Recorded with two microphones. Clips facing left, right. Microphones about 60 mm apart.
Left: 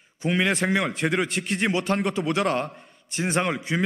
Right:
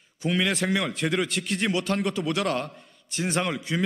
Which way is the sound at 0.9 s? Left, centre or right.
Left.